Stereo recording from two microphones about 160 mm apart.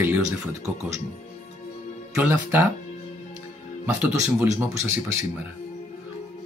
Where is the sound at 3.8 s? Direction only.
10° right (ahead or behind).